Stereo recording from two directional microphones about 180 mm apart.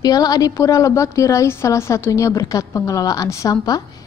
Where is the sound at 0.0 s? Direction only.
20° left (ahead or behind).